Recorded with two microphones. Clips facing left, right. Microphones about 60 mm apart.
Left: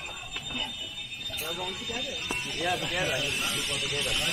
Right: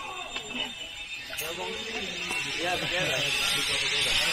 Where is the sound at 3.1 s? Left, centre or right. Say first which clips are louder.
Right 1 dB; right.